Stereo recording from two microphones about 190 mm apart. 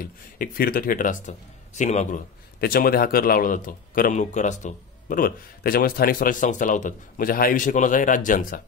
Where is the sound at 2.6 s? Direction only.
50° left (ahead or behind).